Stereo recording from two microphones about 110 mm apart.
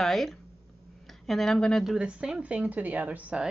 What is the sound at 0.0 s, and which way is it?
A woman's voice, centre (ahead or behind).